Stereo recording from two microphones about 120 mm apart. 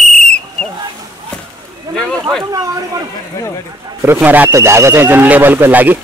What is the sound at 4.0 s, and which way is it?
Speech, 20° right (ahead or behind).